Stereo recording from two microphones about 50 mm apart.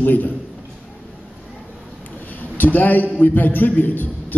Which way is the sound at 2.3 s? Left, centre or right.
Left.